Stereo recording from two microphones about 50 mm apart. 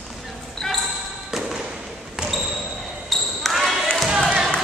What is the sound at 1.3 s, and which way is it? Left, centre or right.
Basketball bounce, centre.